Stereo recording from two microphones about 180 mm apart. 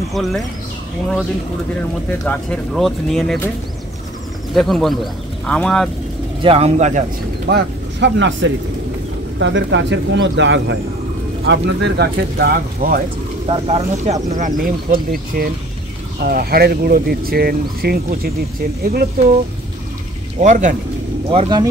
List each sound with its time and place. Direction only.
0.1 s speech: centre (ahead or behind)
2.2 s speech: 5° left (ahead or behind)
4.6 s speech: centre (ahead or behind)
6.4 s speech: 35° right (ahead or behind)
7.4 s speech: 75° right (ahead or behind); by 13.0 s 55° right (ahead or behind)
13.5 s speech: 35° right (ahead or behind)
14.3 s speech: 45° right (ahead or behind)
20.3 s speech: 45° right (ahead or behind)
21.3 s speech: 25° right (ahead or behind)